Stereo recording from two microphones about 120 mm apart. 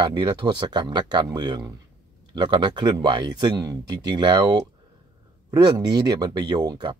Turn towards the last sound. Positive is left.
turn(degrees=-35)  # may be behind; listen again after turning